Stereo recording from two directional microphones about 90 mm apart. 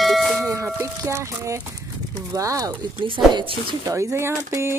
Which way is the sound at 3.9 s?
30° right (ahead or behind).